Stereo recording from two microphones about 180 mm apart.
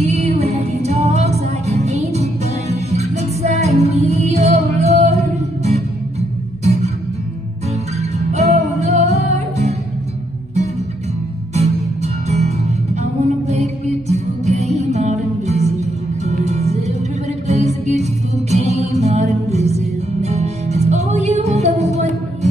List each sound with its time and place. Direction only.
0.0 s music: 35° right (ahead or behind)
6.6 s music: 35° right (ahead or behind)
8.3 s music: 40° right (ahead or behind)
11.5 s music: 35° right (ahead or behind)